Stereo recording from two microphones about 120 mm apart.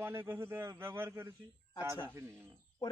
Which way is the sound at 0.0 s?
15° right (ahead or behind).